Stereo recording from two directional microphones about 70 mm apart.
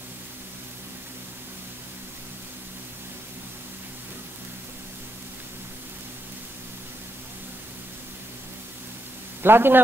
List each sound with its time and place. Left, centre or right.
9.4 s a man's voice: right